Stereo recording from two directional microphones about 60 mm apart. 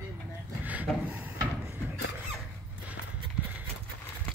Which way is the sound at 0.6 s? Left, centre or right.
Right.